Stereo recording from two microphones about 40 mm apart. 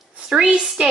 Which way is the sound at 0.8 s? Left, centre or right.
Right.